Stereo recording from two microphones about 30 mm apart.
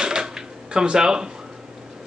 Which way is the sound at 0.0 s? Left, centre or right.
Right.